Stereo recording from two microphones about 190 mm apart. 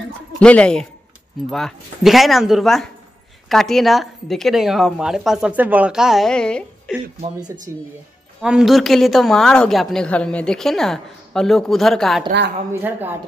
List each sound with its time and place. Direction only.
0.4 s a woman's voice: 5° left (ahead or behind)
7.4 s speech: 40° right (ahead or behind)
8.4 s a woman's voice: 5° right (ahead or behind)
12.3 s a woman's voice: 60° right (ahead or behind)
12.8 s speech: 10° right (ahead or behind)